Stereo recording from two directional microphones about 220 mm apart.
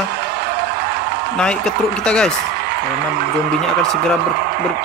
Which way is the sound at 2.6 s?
45° right (ahead or behind).